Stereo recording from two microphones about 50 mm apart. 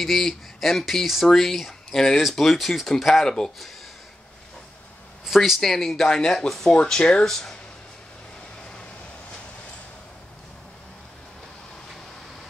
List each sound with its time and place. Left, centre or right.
0.0 s speech: centre
3.3 s speech: centre
5.2 s speech: centre
7.2 s speech: centre